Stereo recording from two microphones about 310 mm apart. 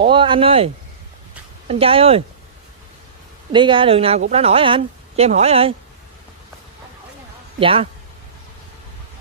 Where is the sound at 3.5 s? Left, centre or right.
Centre.